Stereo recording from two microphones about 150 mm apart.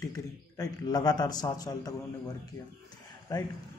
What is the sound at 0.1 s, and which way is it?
Speech, 25° left (ahead or behind).